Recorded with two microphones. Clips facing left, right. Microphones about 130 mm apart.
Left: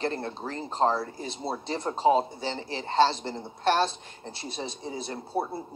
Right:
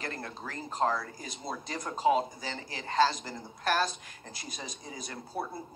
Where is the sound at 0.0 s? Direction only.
30° left (ahead or behind).